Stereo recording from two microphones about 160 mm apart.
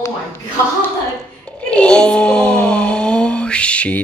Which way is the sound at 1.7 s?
5° left (ahead or behind).